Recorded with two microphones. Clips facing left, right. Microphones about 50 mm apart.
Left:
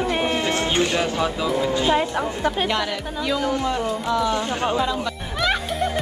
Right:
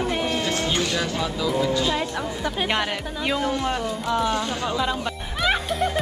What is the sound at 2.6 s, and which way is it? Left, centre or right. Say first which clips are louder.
Speech: left 1 dB; right.